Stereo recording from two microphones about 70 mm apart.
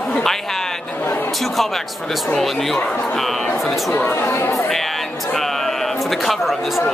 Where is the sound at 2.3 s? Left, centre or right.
Centre.